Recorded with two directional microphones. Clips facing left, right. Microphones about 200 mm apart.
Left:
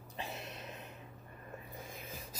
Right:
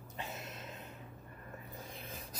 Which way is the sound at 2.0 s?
Centre (ahead or behind).